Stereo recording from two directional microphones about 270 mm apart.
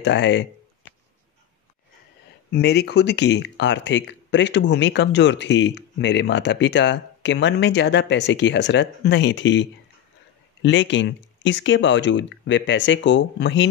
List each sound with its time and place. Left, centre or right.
0.0 s speech: left
2.5 s speech: left